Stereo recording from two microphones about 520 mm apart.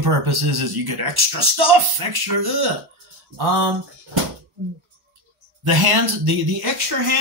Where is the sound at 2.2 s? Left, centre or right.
Right.